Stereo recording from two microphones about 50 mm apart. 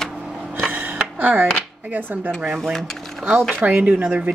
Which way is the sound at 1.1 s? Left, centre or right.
Right.